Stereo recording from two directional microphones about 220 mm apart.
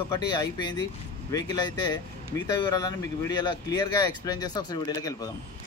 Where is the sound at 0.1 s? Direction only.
20° left (ahead or behind).